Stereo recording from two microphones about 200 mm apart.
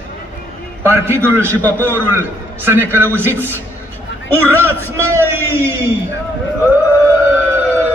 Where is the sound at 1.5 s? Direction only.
10° left (ahead or behind).